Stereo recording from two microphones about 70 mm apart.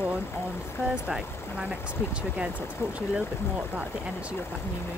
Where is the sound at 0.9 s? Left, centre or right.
Centre.